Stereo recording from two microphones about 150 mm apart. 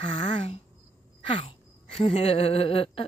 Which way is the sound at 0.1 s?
40° left (ahead or behind).